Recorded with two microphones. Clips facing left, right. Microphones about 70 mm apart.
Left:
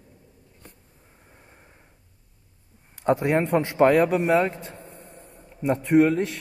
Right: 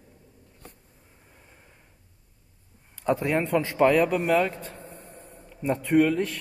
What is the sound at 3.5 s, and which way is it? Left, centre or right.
Speech, left.